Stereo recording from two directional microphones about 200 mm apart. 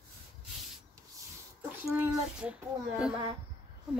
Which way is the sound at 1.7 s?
10° right (ahead or behind).